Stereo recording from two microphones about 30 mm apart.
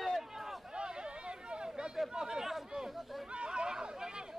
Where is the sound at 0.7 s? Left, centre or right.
Right.